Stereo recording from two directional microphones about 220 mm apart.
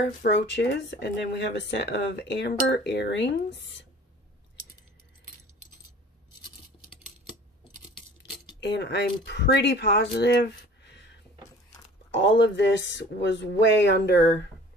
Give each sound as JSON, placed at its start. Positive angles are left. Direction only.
{"t": 0.2, "sound": "speech", "side_deg": 55}
{"t": 8.2, "sound": "speech", "side_deg": 50}
{"t": 10.8, "sound": "a sound", "side_deg": 50}
{"t": 12.1, "sound": "speech", "side_deg": 55}